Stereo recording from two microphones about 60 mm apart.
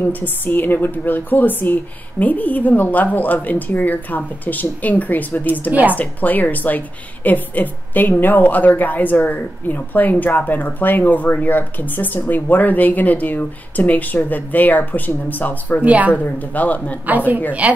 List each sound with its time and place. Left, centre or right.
0.0 s speech: left
5.7 s speech: right
5.9 s speech: left
15.8 s speech: right
16.1 s speech: left
17.5 s speech: right